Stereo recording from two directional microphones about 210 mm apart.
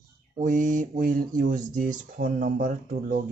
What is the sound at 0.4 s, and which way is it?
Speech, 40° right (ahead or behind).